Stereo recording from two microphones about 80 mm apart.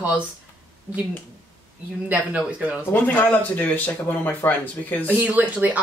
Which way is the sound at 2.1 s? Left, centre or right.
Centre.